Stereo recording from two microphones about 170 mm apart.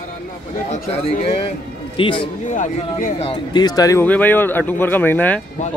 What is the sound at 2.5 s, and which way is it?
Speech, 50° left (ahead or behind).